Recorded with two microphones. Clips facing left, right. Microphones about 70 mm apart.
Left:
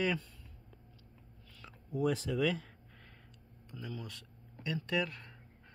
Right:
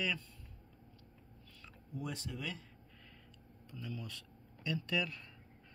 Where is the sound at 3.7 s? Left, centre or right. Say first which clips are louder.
Left 2 dB; left.